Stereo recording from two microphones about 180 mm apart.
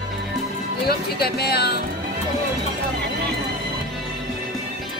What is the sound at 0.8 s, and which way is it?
Speech, 60° left (ahead or behind).